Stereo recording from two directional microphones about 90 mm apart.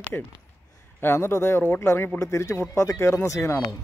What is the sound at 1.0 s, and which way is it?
A man's voice, 25° left (ahead or behind).